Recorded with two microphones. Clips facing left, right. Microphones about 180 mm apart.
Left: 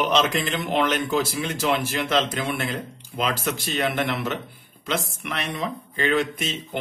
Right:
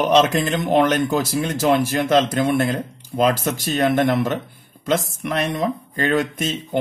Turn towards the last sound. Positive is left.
turn(degrees=-45)  # may be behind; listen again after turning